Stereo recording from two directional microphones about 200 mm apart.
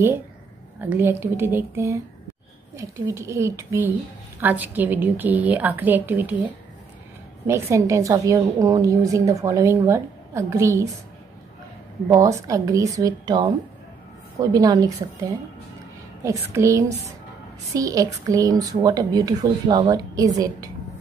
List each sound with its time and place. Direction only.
0.7 s a woman's voice: 10° right (ahead or behind)
12.1 s a woman's voice: 15° right (ahead or behind)
14.5 s a woman's voice: 20° right (ahead or behind)